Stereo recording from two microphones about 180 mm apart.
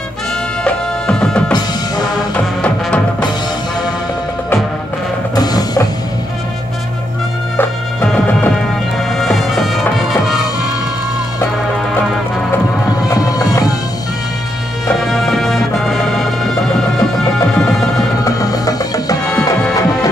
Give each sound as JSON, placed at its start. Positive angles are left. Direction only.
{"t": 0.7, "sound": "music", "side_deg": 5}
{"t": 5.3, "sound": "music", "side_deg": 20}
{"t": 7.5, "sound": "music", "side_deg": 10}
{"t": 13.1, "sound": "music", "side_deg": 20}
{"t": 15.0, "sound": "music", "side_deg": 0}
{"t": 17.6, "sound": "music", "side_deg": 0}
{"t": 18.2, "sound": "music", "side_deg": 20}